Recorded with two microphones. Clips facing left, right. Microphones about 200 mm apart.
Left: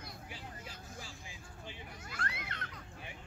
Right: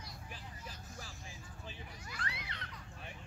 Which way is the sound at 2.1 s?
50° left (ahead or behind).